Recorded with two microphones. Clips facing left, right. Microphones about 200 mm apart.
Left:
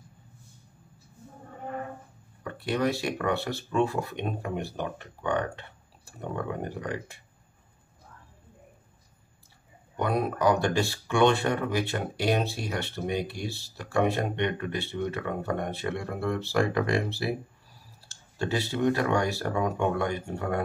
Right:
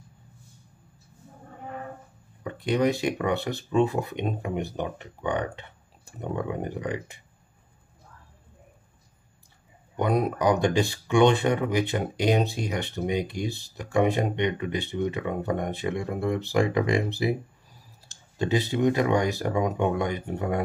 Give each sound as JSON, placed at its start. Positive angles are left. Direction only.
{"t": 2.4, "sound": "speech", "side_deg": -20}
{"t": 9.9, "sound": "speech", "side_deg": -20}